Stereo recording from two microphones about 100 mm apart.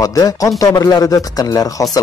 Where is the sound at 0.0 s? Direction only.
35° left (ahead or behind).